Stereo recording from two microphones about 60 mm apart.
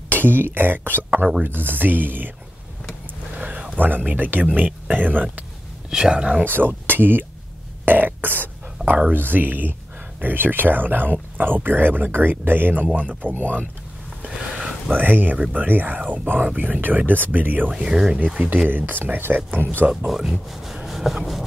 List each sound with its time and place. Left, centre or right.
0.1 s speech: right
3.3 s a sound: right
3.8 s speech: right
5.9 s speech: centre
6.4 s speech: right
7.8 s burping: right
8.9 s speech: right
15.0 s speech: right
20.1 s speech: centre